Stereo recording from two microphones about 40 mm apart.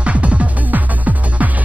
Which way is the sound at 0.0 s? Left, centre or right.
Right.